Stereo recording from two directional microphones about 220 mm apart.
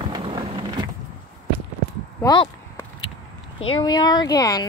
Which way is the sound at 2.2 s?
15° left (ahead or behind).